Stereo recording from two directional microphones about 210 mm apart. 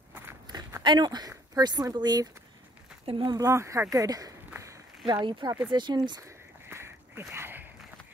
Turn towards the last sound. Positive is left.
turn(degrees=-10)  # may be behind; listen again after turning